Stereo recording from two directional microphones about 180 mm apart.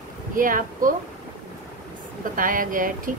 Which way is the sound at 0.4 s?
50° right (ahead or behind).